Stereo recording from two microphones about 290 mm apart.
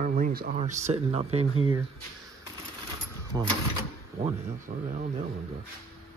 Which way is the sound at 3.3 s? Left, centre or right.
Centre.